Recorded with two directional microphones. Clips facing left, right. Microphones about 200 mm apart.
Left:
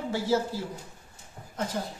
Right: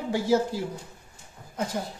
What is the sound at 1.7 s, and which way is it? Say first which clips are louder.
Speech: even; 15° right (ahead or behind).